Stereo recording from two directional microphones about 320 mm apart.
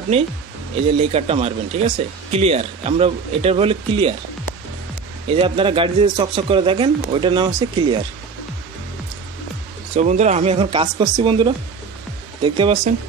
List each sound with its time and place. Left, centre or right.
0.1 s speech: centre
5.3 s speech: centre
9.9 s speech: right